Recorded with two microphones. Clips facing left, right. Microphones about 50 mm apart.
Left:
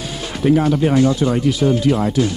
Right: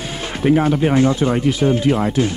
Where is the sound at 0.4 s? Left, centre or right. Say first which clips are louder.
Even; right.